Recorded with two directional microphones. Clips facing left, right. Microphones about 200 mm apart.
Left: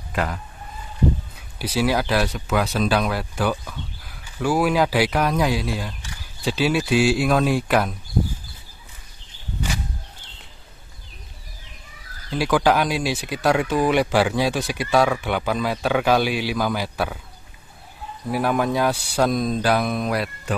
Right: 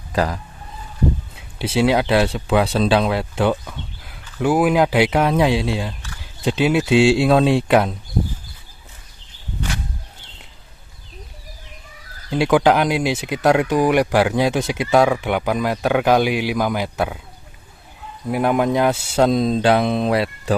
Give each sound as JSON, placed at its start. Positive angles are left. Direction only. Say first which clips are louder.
{"t": 0.1, "sound": "speech", "louder": "right 5 dB", "side_deg": -35}
{"t": 1.6, "sound": "speech", "louder": "right 4 dB", "side_deg": -25}
{"t": 12.3, "sound": "a man's voice", "louder": "right 4 dB", "side_deg": -20}
{"t": 18.3, "sound": "speech", "louder": "right 4 dB", "side_deg": -20}